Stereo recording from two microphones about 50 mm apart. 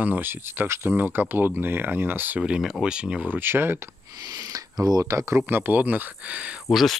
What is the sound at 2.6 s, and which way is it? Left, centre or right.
Speech, centre.